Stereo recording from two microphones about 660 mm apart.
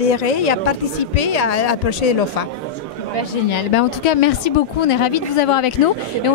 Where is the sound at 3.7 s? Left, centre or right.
Left.